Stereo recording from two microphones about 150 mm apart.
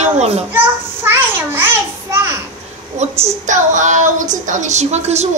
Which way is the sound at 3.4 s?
55° right (ahead or behind).